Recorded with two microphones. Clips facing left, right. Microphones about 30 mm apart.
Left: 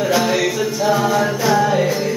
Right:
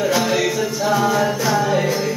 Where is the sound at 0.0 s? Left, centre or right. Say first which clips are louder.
Left 1 dB; centre.